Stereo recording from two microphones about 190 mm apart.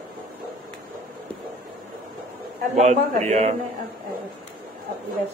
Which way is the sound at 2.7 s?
40° right (ahead or behind).